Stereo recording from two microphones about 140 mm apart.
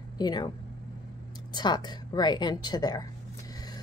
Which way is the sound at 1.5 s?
30° left (ahead or behind).